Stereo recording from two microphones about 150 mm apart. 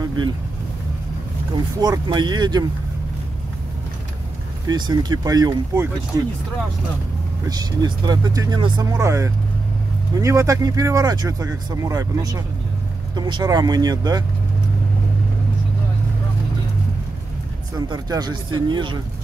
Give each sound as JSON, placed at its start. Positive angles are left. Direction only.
{"t": 1.8, "sound": "speech", "side_deg": -30}
{"t": 4.6, "sound": "speech", "side_deg": -30}
{"t": 7.4, "sound": "speech", "side_deg": -25}
{"t": 17.7, "sound": "speech", "side_deg": -30}